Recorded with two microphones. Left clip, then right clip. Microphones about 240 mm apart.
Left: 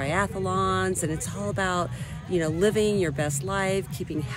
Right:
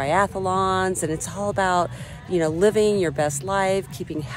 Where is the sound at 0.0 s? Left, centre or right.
Centre.